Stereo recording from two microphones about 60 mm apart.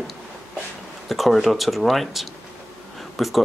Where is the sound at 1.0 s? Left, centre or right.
Centre.